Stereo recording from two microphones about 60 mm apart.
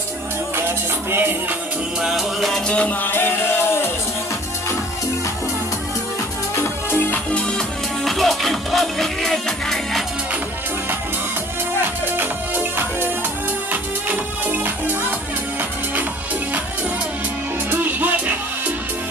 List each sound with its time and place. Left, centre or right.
0.6 s music: right
2.0 s music: centre
2.7 s music: left
3.1 s music: left
6.5 s music: left
7.2 s music: centre
8.0 s music: centre
11.8 s music: right
17.6 s music: right